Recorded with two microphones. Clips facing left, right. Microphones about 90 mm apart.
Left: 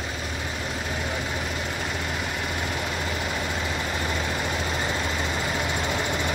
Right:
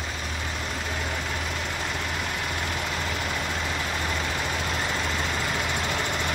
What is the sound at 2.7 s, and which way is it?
Vehicle, 5° left (ahead or behind).